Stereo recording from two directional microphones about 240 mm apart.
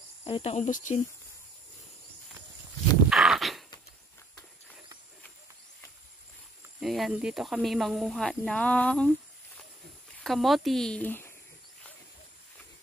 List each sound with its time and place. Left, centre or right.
0.2 s speech: left
3.1 s dog: centre
6.8 s speech: centre
10.2 s speech: centre